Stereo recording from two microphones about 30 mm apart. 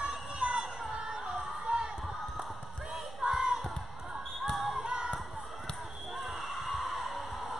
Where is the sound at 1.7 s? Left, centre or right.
Right.